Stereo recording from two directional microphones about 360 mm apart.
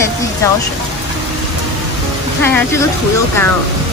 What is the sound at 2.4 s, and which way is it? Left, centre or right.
Speech, centre.